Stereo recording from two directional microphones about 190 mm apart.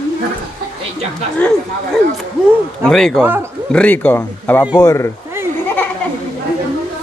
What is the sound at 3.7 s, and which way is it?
A man's voice, 10° left (ahead or behind).